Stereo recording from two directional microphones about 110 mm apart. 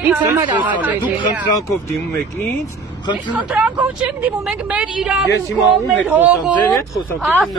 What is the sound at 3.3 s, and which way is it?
Speech, 10° right (ahead or behind).